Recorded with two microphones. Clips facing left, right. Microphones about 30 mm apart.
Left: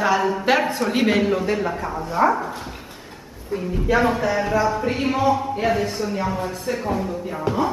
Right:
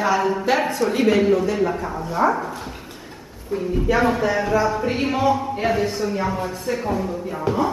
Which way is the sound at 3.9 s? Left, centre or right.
Centre.